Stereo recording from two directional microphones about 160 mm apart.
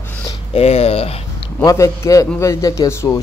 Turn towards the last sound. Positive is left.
turn(degrees=20)  # may be behind; listen again after turning